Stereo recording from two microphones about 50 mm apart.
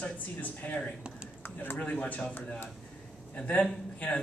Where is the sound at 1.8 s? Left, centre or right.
Left.